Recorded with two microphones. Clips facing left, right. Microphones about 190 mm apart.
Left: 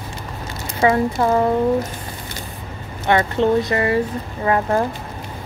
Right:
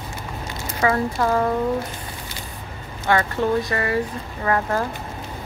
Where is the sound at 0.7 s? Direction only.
25° left (ahead or behind).